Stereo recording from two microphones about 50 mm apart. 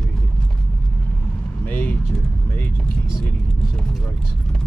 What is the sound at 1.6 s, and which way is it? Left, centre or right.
Speech, left.